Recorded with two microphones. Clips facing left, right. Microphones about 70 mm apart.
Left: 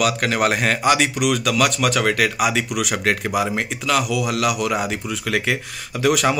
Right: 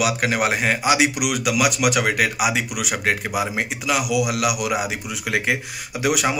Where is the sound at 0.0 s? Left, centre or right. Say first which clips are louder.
Left 1 dB; centre.